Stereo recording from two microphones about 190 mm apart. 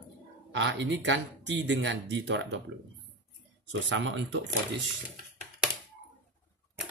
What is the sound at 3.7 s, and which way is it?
Speech, 70° right (ahead or behind).